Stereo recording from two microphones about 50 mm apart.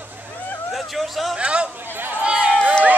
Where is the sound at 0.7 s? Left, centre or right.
Centre.